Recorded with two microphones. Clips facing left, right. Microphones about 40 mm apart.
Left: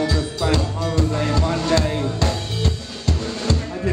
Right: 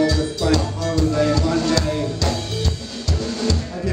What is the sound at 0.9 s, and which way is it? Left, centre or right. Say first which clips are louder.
Music: right 4 dB; left.